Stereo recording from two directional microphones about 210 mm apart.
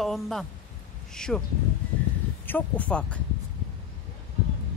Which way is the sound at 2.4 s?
10° left (ahead or behind).